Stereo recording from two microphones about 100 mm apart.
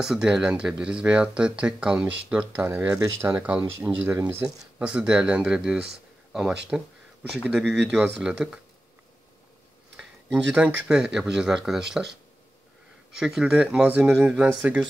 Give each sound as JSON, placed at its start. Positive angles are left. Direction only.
{"t": 0.0, "sound": "speech", "side_deg": -5}
{"t": 2.5, "sound": "speech", "side_deg": -25}
{"t": 3.3, "sound": "speech", "side_deg": -15}
{"t": 9.9, "sound": "speech", "side_deg": -10}
{"t": 13.2, "sound": "speech", "side_deg": -5}